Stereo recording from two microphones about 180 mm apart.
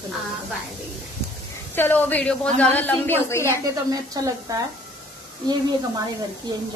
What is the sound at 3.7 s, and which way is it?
A woman's voice, 20° right (ahead or behind).